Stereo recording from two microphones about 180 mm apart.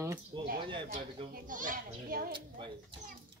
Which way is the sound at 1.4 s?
50° right (ahead or behind).